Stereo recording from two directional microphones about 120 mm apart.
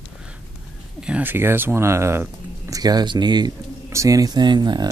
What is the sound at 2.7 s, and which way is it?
Speech, 35° right (ahead or behind).